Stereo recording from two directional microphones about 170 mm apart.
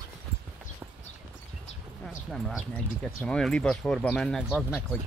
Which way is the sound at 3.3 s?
5° left (ahead or behind).